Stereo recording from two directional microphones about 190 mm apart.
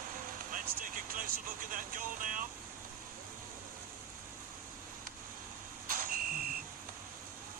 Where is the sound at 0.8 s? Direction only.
45° right (ahead or behind).